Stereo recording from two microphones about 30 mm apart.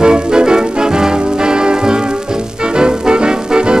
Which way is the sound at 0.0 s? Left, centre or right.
Right.